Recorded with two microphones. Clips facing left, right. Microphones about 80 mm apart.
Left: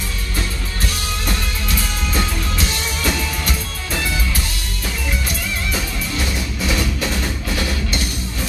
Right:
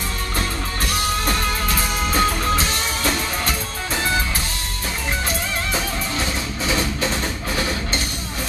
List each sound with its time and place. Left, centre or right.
1.2 s music: right
5.7 s music: right